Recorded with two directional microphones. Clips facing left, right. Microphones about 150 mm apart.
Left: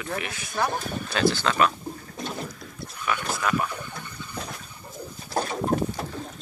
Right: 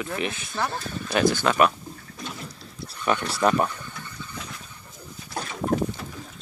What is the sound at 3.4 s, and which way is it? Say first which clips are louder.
Speech: right 5 dB; 35° right (ahead or behind).